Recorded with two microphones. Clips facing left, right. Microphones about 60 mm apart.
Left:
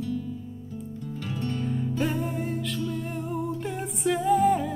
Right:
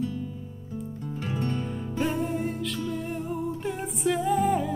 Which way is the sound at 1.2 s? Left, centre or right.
Right.